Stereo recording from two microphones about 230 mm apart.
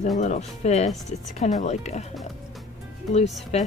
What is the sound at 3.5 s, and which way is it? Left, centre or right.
Speech, left.